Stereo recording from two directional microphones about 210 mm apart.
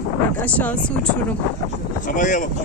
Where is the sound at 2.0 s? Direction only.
35° left (ahead or behind).